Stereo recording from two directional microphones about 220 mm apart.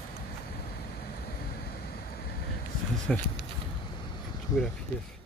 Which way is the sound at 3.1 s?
5° left (ahead or behind).